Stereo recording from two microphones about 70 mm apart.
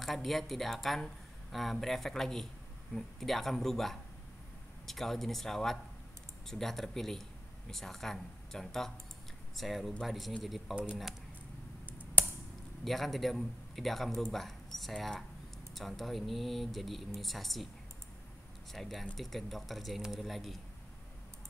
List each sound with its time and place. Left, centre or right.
0.0 s speech: centre
10.7 s speech: centre
12.8 s speech: centre
18.7 s speech: centre